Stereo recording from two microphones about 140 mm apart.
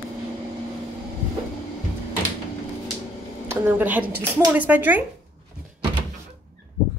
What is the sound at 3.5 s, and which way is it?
Speech, 15° right (ahead or behind).